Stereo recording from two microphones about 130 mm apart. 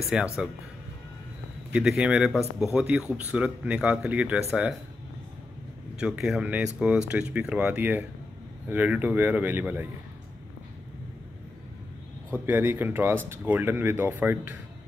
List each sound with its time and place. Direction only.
0.0 s speech: 5° right (ahead or behind)
1.7 s speech: 10° right (ahead or behind)
5.9 s speech: 5° right (ahead or behind)
12.3 s speech: 15° right (ahead or behind)